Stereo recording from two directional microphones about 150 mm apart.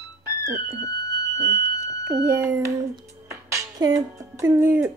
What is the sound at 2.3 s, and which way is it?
Speech, 15° right (ahead or behind).